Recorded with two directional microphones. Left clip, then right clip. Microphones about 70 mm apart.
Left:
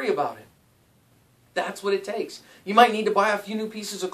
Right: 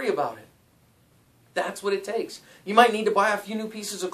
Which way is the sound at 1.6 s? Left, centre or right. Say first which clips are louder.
Left 1 dB; right.